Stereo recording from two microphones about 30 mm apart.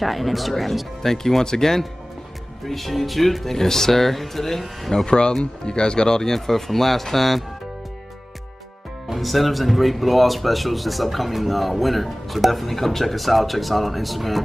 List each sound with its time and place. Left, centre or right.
0.0 s speech: centre
1.1 s speech: centre
2.6 s speech: centre
5.0 s speech: left
6.3 s speech: centre
9.1 s speech: centre